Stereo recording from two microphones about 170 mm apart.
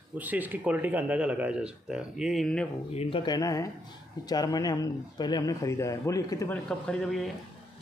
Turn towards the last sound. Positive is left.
turn(degrees=0)  # may be behind; listen again after turning